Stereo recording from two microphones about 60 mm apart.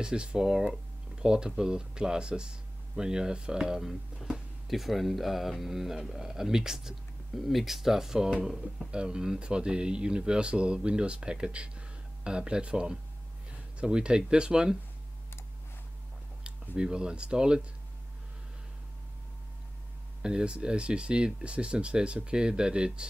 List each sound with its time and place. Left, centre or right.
0.0 s speech: centre
16.7 s speech: centre
20.2 s speech: centre